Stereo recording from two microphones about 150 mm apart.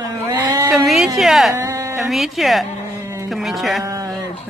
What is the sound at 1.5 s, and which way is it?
Speech, 20° right (ahead or behind).